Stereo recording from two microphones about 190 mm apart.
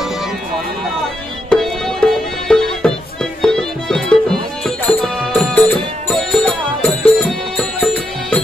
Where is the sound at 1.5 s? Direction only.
Centre (ahead or behind).